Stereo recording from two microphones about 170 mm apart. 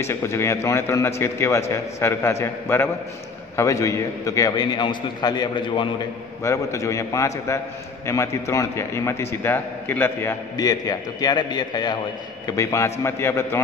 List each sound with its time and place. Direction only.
0.0 s a man's voice: 15° left (ahead or behind)
10.5 s a man's voice: 25° left (ahead or behind)